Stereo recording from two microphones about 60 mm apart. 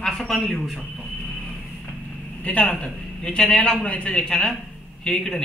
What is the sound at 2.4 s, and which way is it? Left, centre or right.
A man's voice, left.